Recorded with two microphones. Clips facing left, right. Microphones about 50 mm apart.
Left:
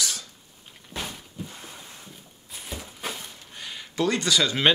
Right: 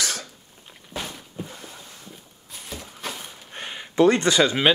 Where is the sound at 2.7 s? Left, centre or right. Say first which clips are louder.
Even; centre.